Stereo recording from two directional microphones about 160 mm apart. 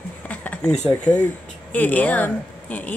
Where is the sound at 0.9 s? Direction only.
10° left (ahead or behind).